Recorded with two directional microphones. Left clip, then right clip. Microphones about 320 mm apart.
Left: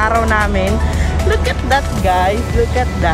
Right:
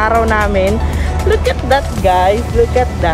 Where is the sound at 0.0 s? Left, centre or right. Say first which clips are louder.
Right 2 dB; centre.